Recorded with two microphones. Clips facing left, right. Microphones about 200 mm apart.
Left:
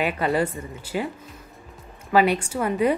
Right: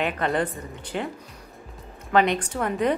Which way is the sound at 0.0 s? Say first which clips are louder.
Left 2 dB; 5° left (ahead or behind).